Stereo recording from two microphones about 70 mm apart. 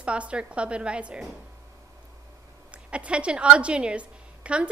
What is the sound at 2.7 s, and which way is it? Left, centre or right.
A woman's voice, centre.